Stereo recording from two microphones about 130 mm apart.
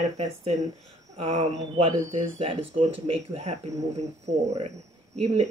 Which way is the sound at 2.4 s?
45° right (ahead or behind).